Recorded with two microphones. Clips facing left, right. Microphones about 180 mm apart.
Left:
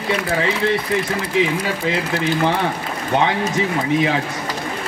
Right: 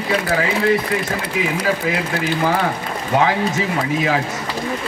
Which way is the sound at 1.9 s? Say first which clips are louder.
Even; 25° left (ahead or behind).